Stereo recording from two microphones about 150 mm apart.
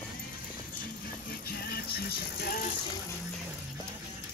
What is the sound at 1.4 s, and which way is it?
Music, 85° left.